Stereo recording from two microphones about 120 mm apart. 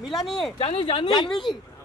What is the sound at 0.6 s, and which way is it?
Speech, 50° left (ahead or behind).